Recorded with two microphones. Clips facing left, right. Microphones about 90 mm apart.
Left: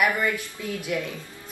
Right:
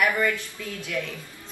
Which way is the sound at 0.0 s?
20° left (ahead or behind).